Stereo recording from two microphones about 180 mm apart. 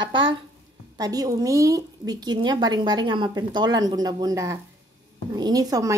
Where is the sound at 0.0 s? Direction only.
90° right.